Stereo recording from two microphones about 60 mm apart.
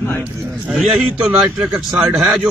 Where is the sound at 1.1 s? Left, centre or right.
Centre.